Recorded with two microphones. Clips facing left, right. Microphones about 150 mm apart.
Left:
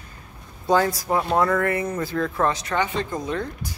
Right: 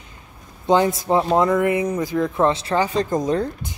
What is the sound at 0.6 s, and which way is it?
Speech, 20° right (ahead or behind).